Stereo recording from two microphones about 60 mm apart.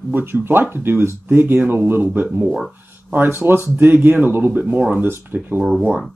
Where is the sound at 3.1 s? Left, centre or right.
Right.